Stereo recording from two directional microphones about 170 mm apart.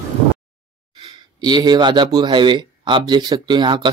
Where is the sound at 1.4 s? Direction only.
25° right (ahead or behind).